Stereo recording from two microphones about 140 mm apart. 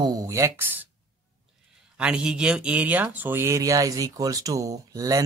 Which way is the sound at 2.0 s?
5° right (ahead or behind).